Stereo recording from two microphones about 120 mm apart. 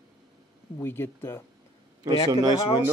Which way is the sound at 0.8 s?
20° left (ahead or behind).